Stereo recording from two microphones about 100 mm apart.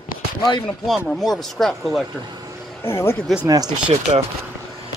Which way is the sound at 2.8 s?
25° left (ahead or behind).